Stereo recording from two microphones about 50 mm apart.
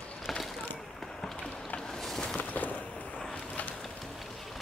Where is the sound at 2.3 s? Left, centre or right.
Left.